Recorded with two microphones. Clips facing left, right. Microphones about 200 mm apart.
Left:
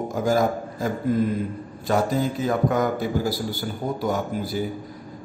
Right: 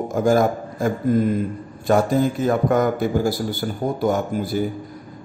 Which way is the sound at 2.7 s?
50° right (ahead or behind).